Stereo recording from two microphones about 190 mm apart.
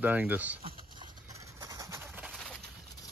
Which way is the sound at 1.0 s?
15° right (ahead or behind).